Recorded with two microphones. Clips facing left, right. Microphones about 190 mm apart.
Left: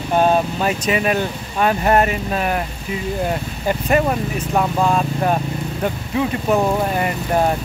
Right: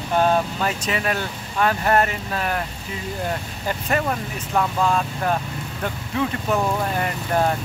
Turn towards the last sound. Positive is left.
turn(degrees=15)  # may be behind; listen again after turning